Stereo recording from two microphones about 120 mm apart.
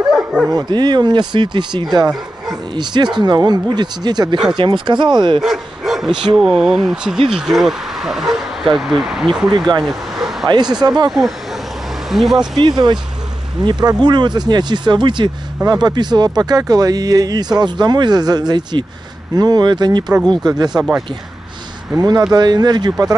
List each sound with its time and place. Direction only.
0.1 s dog: 5° right (ahead or behind)
0.5 s speech: 35° right (ahead or behind)
5.4 s speech: 5° right (ahead or behind)
9.5 s speech: 40° right (ahead or behind)
11.1 s speech: centre (ahead or behind)
12.5 s speech: 35° right (ahead or behind)
20.7 s speech: 5° right (ahead or behind)
21.9 s speech: 35° right (ahead or behind)